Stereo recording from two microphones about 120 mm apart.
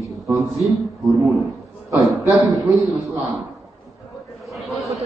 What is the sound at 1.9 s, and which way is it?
A man's voice, centre (ahead or behind).